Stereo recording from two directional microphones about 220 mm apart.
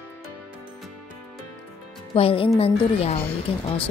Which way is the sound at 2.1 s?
25° left (ahead or behind).